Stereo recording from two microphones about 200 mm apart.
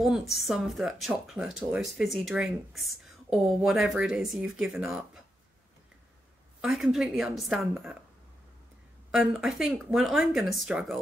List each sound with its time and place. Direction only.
0.0 s speech: centre (ahead or behind)
6.6 s speech: centre (ahead or behind)
9.1 s speech: 5° right (ahead or behind)